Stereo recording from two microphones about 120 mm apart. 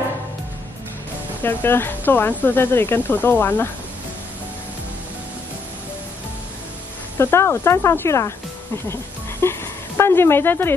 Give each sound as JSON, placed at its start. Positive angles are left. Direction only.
{"t": 1.4, "sound": "speech", "side_deg": 15}
{"t": 7.2, "sound": "speech", "side_deg": 20}
{"t": 8.8, "sound": "music", "side_deg": 20}